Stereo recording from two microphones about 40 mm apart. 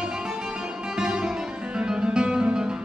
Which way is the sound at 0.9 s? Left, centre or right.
Centre.